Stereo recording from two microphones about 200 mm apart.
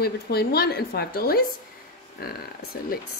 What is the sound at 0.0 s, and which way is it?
Speech, 50° left (ahead or behind).